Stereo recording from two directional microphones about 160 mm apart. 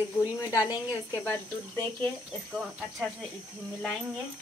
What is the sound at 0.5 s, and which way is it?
Speech, 20° left (ahead or behind).